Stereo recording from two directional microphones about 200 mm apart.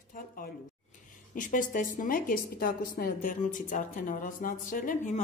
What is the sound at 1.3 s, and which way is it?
Speech, 40° left (ahead or behind).